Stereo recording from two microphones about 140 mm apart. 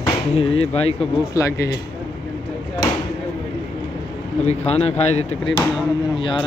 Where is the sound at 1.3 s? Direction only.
20° left (ahead or behind).